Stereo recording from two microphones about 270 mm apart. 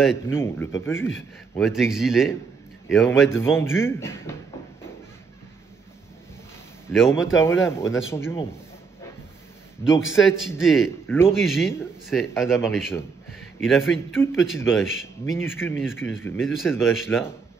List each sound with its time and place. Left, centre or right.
0.3 s speech: centre
1.6 s speech: centre
7.4 s speech: centre
9.8 s a man's voice: centre
15.8 s speech: centre